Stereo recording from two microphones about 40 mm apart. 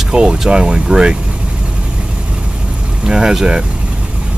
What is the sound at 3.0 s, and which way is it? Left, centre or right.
Speech, centre.